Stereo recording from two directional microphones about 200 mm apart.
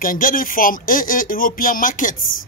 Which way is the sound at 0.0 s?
45° left (ahead or behind).